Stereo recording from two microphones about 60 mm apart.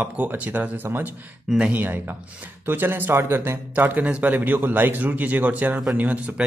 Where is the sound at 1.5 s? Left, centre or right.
Centre.